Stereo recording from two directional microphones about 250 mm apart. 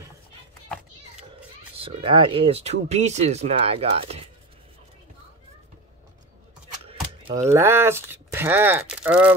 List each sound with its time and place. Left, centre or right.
1.8 s speech: right
6.9 s mechanisms: right
7.4 s speech: centre